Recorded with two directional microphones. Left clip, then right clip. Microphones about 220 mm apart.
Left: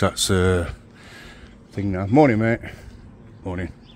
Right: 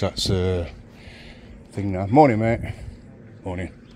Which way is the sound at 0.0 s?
35° left (ahead or behind).